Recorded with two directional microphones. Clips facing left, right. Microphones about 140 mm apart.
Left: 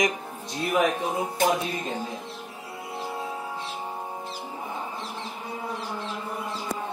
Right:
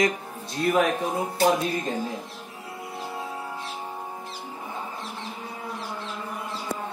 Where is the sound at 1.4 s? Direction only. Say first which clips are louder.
Right 2 dB; 35° right (ahead or behind).